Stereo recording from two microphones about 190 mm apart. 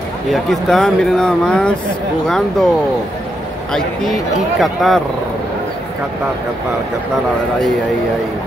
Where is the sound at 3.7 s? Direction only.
Centre (ahead or behind).